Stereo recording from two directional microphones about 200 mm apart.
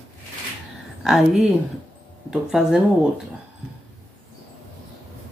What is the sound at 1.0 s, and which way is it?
Speech, centre (ahead or behind).